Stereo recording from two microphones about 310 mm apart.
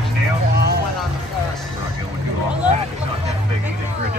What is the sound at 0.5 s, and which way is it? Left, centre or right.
Music, right.